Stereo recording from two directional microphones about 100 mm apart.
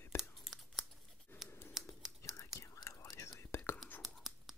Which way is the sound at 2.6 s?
30° left (ahead or behind).